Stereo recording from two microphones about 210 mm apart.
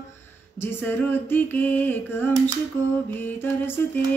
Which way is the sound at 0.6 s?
10° left (ahead or behind).